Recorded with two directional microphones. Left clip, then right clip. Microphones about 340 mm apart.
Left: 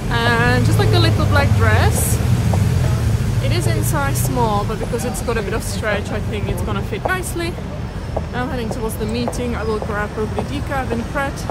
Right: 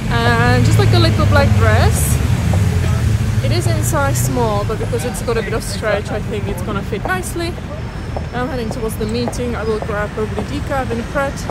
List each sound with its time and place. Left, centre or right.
0.1 s vehicle: centre
3.4 s speech: centre
9.1 s speech: centre